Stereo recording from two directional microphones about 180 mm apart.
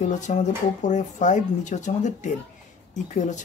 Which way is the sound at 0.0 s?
45° left (ahead or behind).